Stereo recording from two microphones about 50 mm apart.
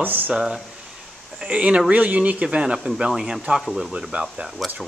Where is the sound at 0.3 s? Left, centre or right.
Centre.